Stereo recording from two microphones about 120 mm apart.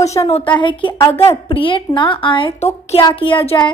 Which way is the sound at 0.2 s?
55° left (ahead or behind).